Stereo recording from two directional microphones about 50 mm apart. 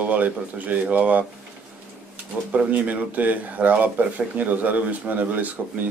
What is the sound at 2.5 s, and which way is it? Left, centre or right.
Speech, right.